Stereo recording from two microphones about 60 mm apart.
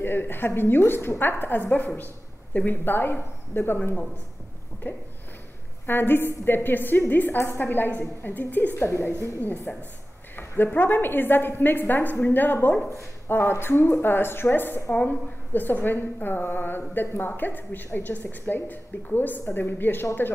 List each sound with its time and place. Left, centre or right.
0.0 s a woman's voice: left
8.7 s a woman's voice: left
9.4 s a woman's voice: left
13.3 s a woman's voice: left